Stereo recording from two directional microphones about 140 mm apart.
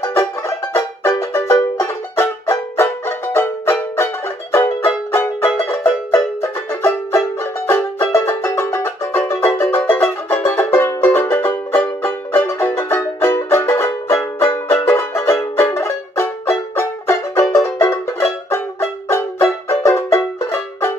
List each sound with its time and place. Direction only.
0.7 s music: 20° left (ahead or behind)